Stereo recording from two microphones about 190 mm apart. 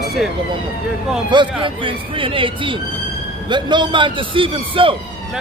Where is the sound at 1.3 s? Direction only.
25° right (ahead or behind).